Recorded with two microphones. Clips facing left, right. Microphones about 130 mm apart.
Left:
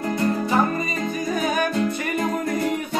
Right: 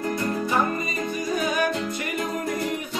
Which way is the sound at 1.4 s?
50° left (ahead or behind).